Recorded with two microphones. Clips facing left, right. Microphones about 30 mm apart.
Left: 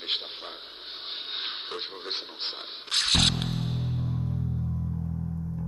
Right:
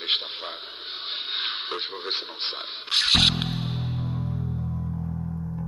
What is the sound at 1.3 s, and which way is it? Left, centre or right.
Radio, right.